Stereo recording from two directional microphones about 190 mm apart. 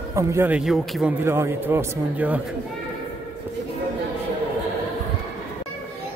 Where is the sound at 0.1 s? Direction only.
15° right (ahead or behind).